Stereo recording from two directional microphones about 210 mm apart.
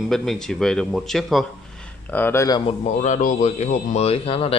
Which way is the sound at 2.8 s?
35° left (ahead or behind).